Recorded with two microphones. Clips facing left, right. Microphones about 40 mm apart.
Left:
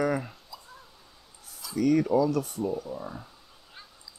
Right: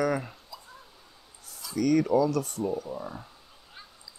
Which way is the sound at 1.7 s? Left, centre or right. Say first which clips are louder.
Even; centre.